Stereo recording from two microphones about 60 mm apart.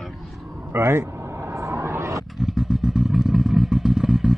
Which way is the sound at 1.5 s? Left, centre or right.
Right.